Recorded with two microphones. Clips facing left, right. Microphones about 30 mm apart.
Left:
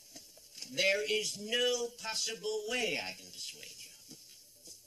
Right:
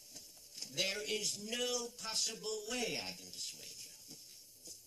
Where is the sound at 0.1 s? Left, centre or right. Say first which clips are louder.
Left 2 dB; left.